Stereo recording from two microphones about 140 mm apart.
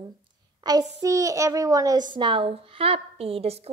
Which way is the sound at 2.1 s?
35° right (ahead or behind).